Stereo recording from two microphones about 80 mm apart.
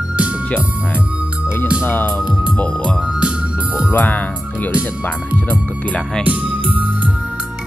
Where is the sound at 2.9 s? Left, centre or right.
Centre.